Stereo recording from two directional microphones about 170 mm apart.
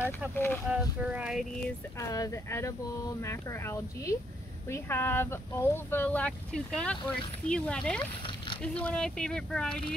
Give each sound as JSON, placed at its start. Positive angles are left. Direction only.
{"t": 0.7, "sound": "speech", "side_deg": -5}
{"t": 2.0, "sound": "speech", "side_deg": 20}